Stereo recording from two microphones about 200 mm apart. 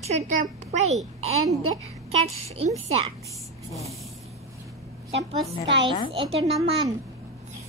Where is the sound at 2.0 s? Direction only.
30° right (ahead or behind).